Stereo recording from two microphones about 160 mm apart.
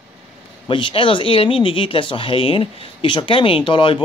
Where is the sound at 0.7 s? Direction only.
35° left (ahead or behind).